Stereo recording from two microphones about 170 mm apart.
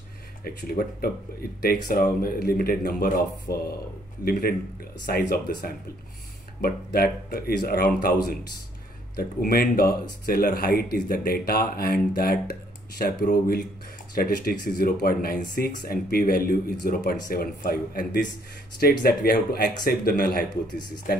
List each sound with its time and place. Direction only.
0.4 s speech: 60° left (ahead or behind)
6.6 s speech: 60° left (ahead or behind)
9.4 s speech: 60° left (ahead or behind)